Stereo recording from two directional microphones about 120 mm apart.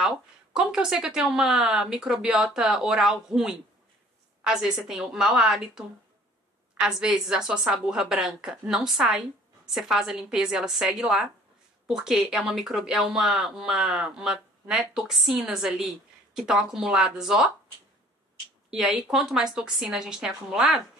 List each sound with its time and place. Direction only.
0.0 s speech: 5° right (ahead or behind)
18.7 s speech: 5° right (ahead or behind)